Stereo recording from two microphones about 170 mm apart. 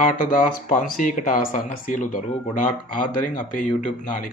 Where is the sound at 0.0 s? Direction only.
55° left (ahead or behind).